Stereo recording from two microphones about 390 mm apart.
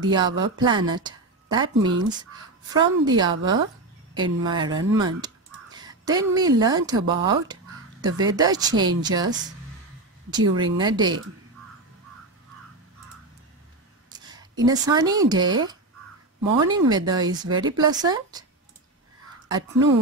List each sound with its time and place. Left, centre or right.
0.0 s speech: centre
10.3 s speech: centre
14.1 s speech: centre
19.4 s speech: centre